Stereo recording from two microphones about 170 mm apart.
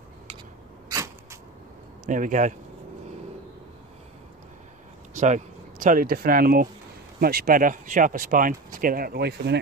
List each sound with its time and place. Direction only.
2.0 s speech: 50° right (ahead or behind)
5.1 s speech: 45° right (ahead or behind); by 9.6 s 80° right